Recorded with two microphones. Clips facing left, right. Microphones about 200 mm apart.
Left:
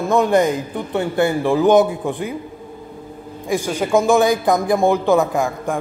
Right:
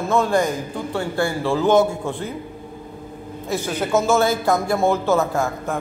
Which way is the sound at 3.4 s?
10° left (ahead or behind).